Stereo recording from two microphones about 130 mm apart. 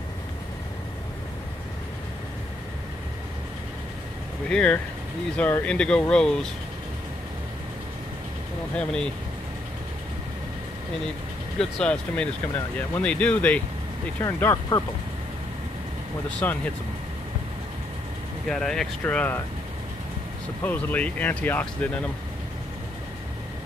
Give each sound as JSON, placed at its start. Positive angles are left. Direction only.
{"t": 4.5, "sound": "speech", "side_deg": 5}
{"t": 8.7, "sound": "speech", "side_deg": 5}
{"t": 11.8, "sound": "speech", "side_deg": 10}
{"t": 14.2, "sound": "speech", "side_deg": 25}
{"t": 16.3, "sound": "speech", "side_deg": 10}
{"t": 18.5, "sound": "speech", "side_deg": 5}
{"t": 20.6, "sound": "speech", "side_deg": 10}